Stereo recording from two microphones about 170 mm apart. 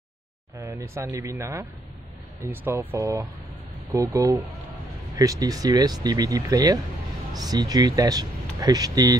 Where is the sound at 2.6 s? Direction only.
10° right (ahead or behind).